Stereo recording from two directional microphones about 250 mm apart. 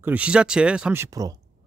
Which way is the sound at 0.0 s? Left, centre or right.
Centre.